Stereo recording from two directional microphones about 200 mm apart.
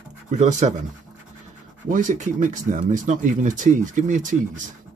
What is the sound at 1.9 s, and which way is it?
Speech, 40° right (ahead or behind).